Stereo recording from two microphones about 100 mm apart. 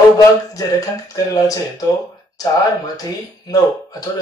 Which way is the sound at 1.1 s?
35° left (ahead or behind).